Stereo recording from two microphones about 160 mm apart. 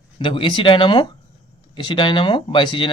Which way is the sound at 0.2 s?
35° left (ahead or behind).